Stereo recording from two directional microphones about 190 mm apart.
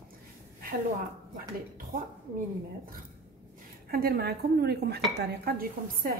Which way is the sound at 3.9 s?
55° right (ahead or behind).